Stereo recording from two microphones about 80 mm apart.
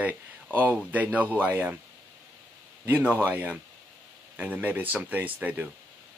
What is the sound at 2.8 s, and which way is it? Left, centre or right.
A man's voice, right.